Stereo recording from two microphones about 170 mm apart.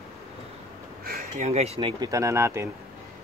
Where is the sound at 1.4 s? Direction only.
40° right (ahead or behind).